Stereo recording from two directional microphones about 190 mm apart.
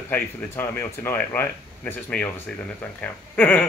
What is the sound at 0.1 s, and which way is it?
Speech, 10° left (ahead or behind).